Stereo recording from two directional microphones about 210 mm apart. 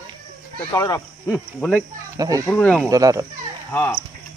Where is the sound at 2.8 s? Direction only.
15° right (ahead or behind).